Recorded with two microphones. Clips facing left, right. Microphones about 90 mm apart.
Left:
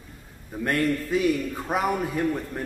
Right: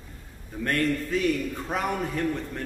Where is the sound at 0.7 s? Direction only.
10° left (ahead or behind).